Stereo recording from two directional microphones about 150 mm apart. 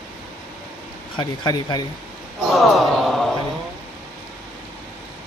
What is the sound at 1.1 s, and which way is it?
Speech, 30° left (ahead or behind).